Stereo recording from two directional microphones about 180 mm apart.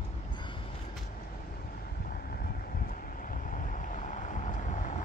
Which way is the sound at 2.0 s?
55° left (ahead or behind).